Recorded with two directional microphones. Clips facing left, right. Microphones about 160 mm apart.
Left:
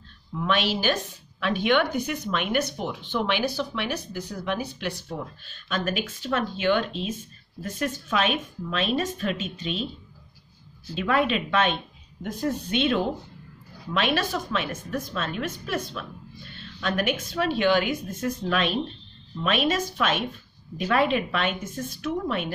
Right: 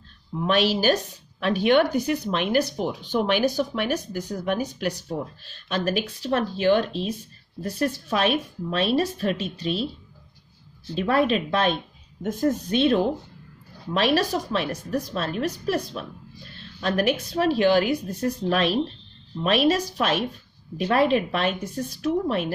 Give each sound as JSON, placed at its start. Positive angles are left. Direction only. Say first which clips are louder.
{"t": 0.4, "sound": "speech", "louder": "right 4 dB", "side_deg": -40}
{"t": 11.0, "sound": "speech", "louder": "right 3 dB", "side_deg": -35}